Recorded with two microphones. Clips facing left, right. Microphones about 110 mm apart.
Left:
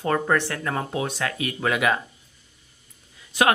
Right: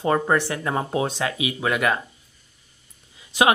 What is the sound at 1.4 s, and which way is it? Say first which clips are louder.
Speech: even; 5° right (ahead or behind).